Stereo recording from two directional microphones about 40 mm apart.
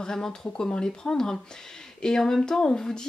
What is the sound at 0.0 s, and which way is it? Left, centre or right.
Speech, centre.